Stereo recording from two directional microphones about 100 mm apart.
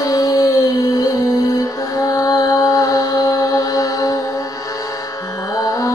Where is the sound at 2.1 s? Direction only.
35° left (ahead or behind).